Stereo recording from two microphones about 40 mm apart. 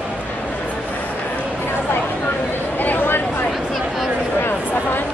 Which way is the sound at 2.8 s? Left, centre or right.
Left.